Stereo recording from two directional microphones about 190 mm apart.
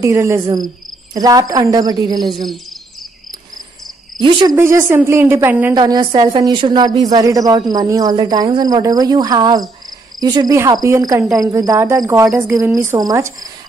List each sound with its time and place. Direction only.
0.0 s a woman's voice: 15° right (ahead or behind)
2.2 s a sound: centre (ahead or behind)
4.2 s speech: 25° right (ahead or behind)
4.6 s a woman's voice: 15° right (ahead or behind)